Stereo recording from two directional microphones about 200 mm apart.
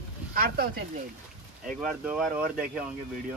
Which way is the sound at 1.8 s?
Centre (ahead or behind).